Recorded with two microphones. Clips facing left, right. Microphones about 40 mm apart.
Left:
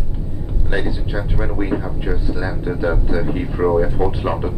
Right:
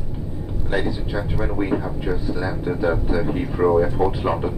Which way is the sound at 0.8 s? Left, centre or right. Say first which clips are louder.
Left 1 dB; centre.